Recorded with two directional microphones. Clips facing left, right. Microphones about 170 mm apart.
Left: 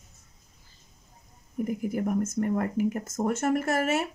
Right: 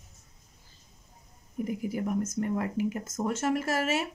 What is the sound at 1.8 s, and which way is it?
Speech, 50° left (ahead or behind).